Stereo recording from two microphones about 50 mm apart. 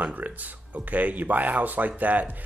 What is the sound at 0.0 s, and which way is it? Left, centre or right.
Speech, right.